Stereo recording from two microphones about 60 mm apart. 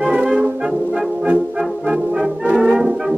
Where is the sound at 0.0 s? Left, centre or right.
Centre.